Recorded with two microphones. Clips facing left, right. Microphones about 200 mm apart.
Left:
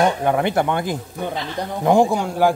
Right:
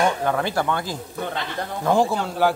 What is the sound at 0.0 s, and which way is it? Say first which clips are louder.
Speech: left 4 dB; 20° left (ahead or behind).